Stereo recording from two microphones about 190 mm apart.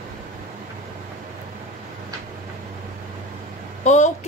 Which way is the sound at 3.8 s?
40° left (ahead or behind).